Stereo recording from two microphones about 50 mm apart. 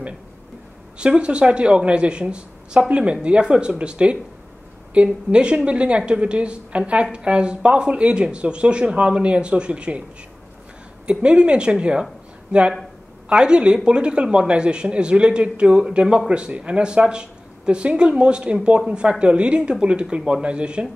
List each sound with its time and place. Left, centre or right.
0.9 s a woman's voice: right
11.1 s a woman's voice: right
13.3 s a woman's voice: centre